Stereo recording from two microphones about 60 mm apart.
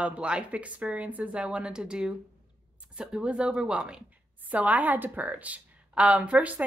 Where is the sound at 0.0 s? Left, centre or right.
Centre.